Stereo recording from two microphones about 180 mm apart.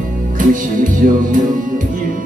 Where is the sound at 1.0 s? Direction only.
50° right (ahead or behind).